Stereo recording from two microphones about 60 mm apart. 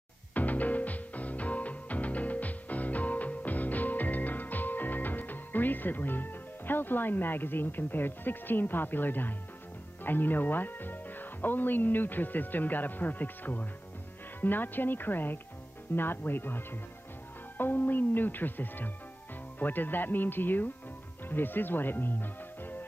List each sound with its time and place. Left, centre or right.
0.3 s music: left
10.0 s speech: left